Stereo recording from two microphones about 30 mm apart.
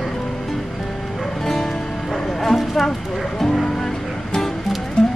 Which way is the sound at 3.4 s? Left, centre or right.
Centre.